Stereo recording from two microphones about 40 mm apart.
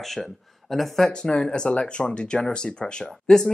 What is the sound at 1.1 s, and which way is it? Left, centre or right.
Speech, left.